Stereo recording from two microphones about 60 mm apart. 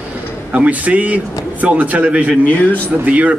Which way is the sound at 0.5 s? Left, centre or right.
Right.